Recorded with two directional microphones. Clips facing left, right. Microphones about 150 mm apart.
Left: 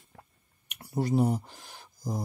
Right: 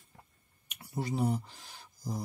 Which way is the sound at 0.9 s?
45° left (ahead or behind).